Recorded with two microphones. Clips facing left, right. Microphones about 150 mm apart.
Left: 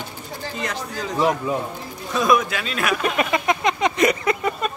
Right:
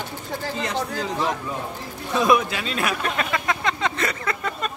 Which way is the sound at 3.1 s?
20° left (ahead or behind).